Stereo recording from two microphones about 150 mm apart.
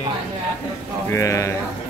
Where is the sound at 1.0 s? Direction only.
20° left (ahead or behind).